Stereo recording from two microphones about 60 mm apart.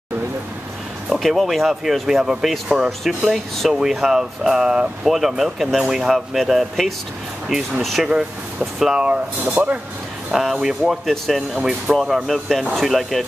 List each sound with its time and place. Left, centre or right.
1.1 s speech: centre
7.8 s speech: centre
8.1 s speech: centre
10.3 s speech: centre